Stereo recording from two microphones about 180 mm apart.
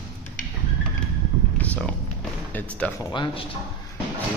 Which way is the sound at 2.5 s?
10° left (ahead or behind).